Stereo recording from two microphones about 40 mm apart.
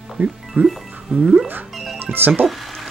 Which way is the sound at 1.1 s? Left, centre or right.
Right.